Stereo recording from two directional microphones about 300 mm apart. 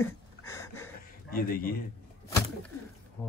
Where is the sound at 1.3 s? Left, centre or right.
Left.